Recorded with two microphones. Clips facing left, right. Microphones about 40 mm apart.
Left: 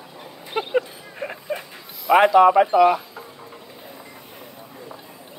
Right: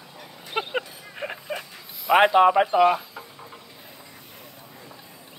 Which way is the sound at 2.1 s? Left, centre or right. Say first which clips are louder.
Left 3 dB; right.